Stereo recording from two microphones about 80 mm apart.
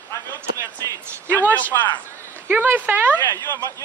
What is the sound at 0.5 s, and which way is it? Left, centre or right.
Speech, right.